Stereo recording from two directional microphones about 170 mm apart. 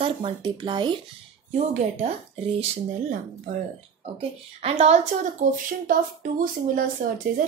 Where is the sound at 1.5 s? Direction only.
40° right (ahead or behind).